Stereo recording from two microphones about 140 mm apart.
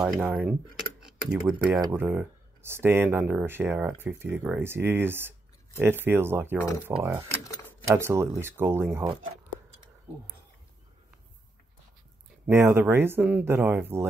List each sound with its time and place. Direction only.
0.2 s speech: 10° right (ahead or behind)
2.0 s speech: 15° right (ahead or behind)
12.4 s speech: 15° right (ahead or behind)